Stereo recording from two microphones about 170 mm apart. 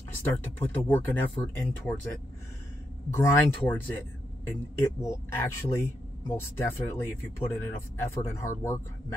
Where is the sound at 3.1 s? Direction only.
15° left (ahead or behind).